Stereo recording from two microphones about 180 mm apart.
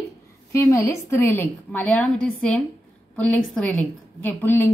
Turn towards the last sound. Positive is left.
turn(degrees=10)  # may be behind; listen again after turning